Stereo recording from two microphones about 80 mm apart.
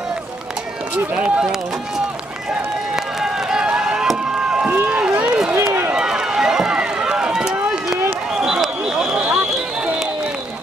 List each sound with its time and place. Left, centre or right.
1.1 s speech: centre
3.2 s run: centre
4.6 s run: centre
5.6 s run: right
5.9 s run: centre
8.4 s a sound: centre